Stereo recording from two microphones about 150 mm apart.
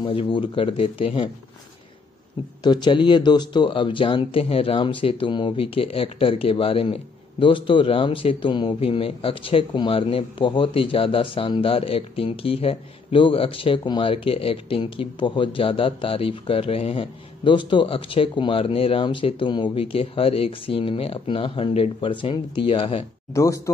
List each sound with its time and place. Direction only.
0.0 s speech: 35° left (ahead or behind)
2.6 s speech: 30° left (ahead or behind)
23.3 s speech: 20° left (ahead or behind)